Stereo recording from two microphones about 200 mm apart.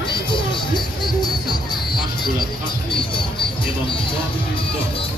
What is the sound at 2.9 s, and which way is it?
Music, 25° left (ahead or behind).